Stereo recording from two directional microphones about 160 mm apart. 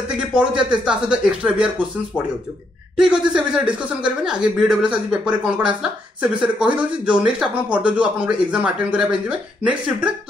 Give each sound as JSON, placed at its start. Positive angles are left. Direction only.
{"t": 0.3, "sound": "speech", "side_deg": -5}
{"t": 3.0, "sound": "speech", "side_deg": -5}